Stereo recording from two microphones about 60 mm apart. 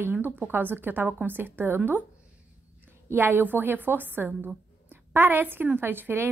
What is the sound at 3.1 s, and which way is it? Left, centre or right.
A woman's voice, right.